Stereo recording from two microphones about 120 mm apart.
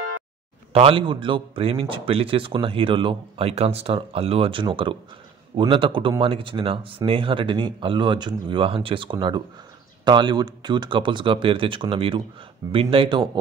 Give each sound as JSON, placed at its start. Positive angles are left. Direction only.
{"t": 0.7, "sound": "a man's voice", "side_deg": -50}